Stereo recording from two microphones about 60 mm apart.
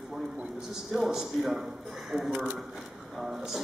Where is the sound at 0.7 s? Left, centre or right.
Centre.